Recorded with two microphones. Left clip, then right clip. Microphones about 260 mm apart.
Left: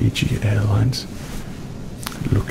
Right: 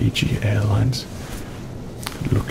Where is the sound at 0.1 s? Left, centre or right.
Centre.